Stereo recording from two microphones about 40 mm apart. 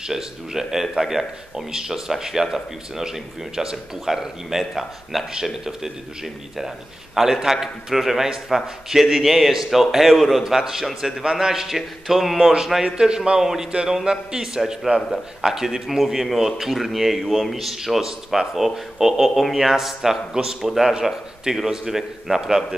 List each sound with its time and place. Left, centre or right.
0.0 s a man's voice: centre
10.4 s a man's voice: centre
12.8 s a man's voice: right
13.4 s a man's voice: centre
13.7 s a man's voice: right
15.0 s a man's voice: centre